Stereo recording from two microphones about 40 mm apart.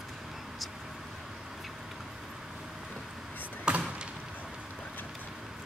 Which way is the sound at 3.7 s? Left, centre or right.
Right.